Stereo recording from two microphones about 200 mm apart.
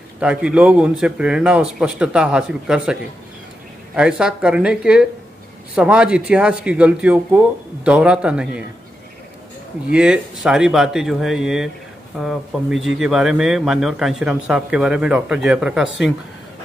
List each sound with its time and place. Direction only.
0.2 s speech: 5° right (ahead or behind)
9.8 s speech: 5° right (ahead or behind)